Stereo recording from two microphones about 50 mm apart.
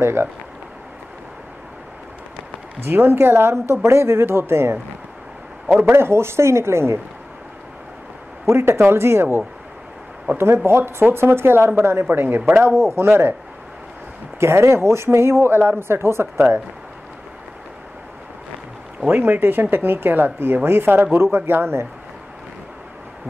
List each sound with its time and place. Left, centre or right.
0.0 s speech: right
2.9 s speech: right
3.6 s speech: right
5.9 s speech: right
8.5 s speech: right
12.1 s a man's voice: right
12.8 s speech: right
14.4 s speech: right
16.3 s a man's voice: right
19.0 s speech: right